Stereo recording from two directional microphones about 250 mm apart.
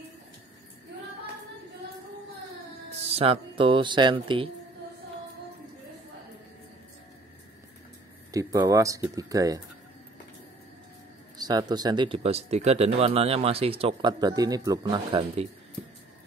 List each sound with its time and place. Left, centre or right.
2.9 s speech: right
8.3 s speech: centre
11.3 s speech: centre